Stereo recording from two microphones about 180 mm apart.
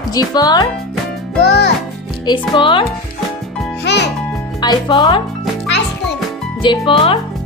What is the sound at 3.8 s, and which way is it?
Music, 70° left (ahead or behind).